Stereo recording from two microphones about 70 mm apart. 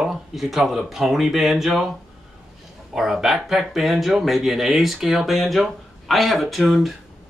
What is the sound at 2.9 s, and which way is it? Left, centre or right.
Speech, centre.